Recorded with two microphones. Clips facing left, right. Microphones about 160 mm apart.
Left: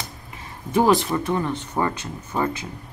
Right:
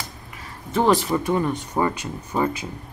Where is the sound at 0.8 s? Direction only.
Centre (ahead or behind).